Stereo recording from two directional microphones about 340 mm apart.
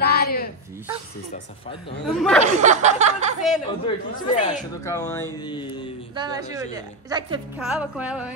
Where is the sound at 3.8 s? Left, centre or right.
Centre.